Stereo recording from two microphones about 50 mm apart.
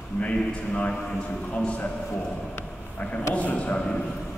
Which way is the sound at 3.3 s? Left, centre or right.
Left.